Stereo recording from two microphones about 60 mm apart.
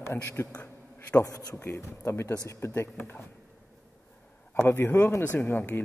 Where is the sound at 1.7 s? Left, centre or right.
Left.